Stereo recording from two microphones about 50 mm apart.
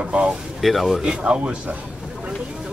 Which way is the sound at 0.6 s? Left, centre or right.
Centre.